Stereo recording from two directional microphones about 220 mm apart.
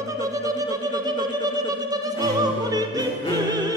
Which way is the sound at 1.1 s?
15° right (ahead or behind).